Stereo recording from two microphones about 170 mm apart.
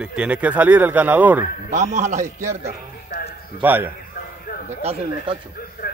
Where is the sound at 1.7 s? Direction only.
45° right (ahead or behind).